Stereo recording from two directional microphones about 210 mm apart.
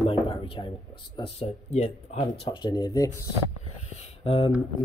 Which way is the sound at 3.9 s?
30° left (ahead or behind).